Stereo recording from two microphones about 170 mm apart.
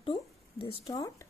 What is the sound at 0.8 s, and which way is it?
Speech, 20° left (ahead or behind).